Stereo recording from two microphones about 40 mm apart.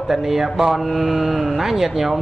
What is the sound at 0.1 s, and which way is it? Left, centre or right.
Speech, centre.